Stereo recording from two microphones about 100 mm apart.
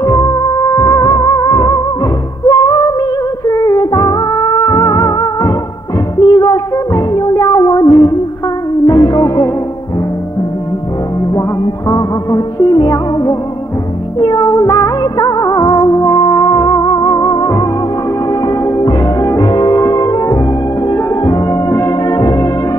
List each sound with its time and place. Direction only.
0.0 s music: 35° left (ahead or behind)
11.9 s music: 35° left (ahead or behind)